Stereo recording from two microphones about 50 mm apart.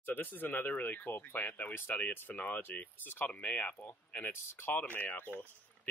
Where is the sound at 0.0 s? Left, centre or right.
Left.